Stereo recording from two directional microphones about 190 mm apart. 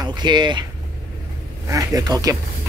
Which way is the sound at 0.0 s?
20° right (ahead or behind).